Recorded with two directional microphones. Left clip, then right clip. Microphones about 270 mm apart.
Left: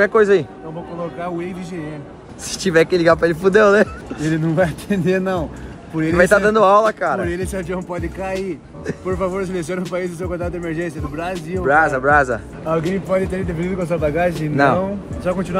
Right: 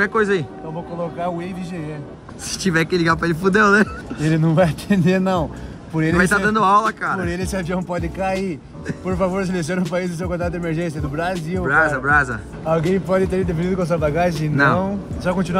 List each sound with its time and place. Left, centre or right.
0.0 s speech: centre
1.2 s speech: right
2.5 s speech: centre
4.2 s speech: right
6.1 s speech: centre
7.2 s speech: right
11.6 s speech: centre
12.9 s speech: right